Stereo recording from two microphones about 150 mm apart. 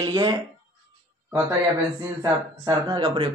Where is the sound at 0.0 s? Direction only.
25° right (ahead or behind).